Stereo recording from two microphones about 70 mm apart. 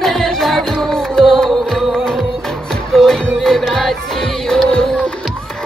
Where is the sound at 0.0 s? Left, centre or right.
Centre.